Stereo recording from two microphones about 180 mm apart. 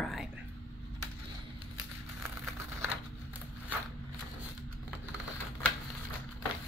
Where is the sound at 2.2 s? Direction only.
15° right (ahead or behind).